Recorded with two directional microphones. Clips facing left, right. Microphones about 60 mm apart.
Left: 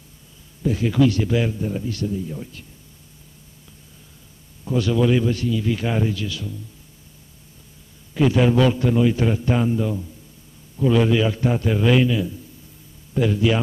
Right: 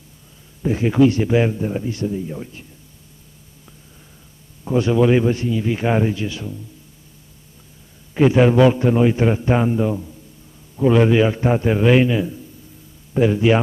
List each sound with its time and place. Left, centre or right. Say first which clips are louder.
0.6 s a man's voice: right 3 dB; right
4.6 s a man's voice: right 4 dB; right
8.1 s a man's voice: right 4 dB; right